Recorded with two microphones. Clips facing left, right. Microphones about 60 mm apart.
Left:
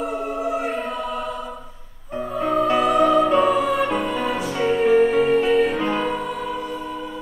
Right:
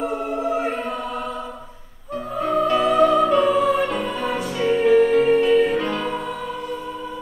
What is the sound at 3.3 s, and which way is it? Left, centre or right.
Music, centre.